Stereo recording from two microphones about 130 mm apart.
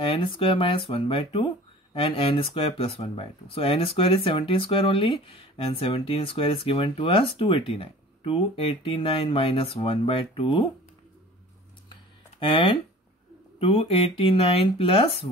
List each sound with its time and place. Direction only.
0.0 s speech: 45° left (ahead or behind)
12.4 s speech: 40° left (ahead or behind)